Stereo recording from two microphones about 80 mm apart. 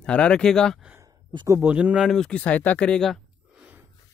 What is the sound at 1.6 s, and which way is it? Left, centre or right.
Speech, centre.